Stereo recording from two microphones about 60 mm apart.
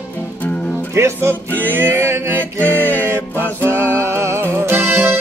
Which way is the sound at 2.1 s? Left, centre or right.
Right.